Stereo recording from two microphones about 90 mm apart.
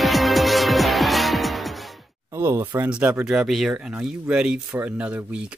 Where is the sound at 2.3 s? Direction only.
30° right (ahead or behind).